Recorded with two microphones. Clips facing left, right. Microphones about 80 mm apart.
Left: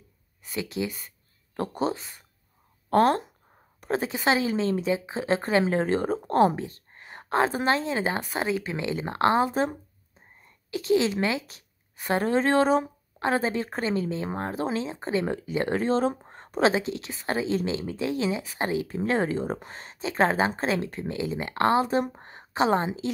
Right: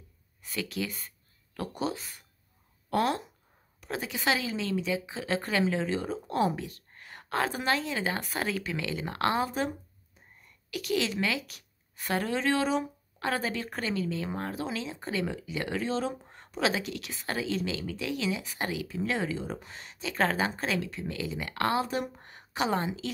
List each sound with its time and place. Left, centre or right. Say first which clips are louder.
0.5 s speech: left 4 dB; left
1.5 s speech: left 5 dB; left
13.2 s speech: left 6 dB; left